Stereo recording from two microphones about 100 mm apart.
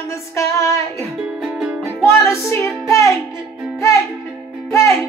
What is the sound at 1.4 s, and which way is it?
Music, 10° right (ahead or behind).